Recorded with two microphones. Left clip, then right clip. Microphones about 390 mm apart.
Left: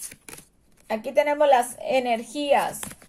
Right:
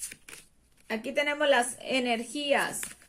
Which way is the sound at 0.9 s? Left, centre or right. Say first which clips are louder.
Left 7 dB; left.